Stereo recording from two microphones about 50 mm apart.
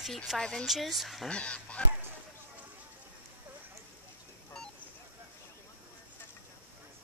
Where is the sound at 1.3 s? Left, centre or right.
Left.